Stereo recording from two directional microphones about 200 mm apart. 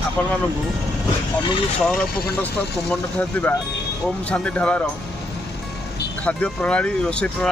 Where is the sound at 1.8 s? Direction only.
Centre (ahead or behind).